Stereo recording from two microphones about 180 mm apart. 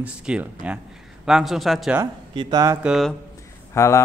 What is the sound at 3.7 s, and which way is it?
Speech, 15° left (ahead or behind).